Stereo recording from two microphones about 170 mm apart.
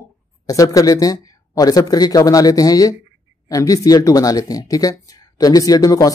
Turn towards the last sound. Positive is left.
turn(degrees=20)  # may be behind; listen again after turning